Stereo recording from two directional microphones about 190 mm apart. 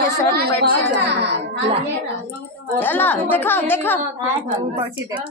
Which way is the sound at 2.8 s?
10° left (ahead or behind).